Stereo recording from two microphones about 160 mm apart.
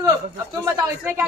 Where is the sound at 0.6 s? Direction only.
20° right (ahead or behind).